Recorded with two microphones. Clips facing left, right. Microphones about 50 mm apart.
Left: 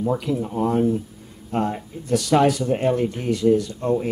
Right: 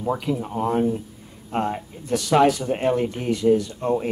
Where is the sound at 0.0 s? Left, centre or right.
Centre.